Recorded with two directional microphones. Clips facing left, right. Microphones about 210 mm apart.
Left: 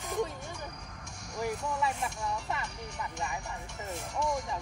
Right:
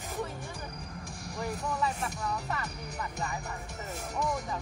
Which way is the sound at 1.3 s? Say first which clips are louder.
Left 1 dB; 35° right (ahead or behind).